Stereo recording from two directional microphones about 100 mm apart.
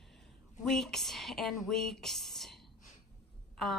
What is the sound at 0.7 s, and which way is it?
A woman's voice, 5° left (ahead or behind).